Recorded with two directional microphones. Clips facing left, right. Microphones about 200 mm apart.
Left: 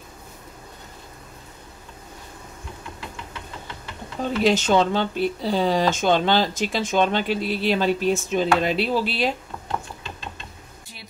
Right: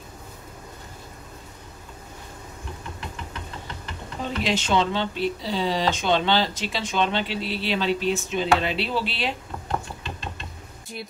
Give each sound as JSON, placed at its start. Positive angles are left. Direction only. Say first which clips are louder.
{"t": 4.4, "sound": "speech", "louder": "left 5 dB", "side_deg": 45}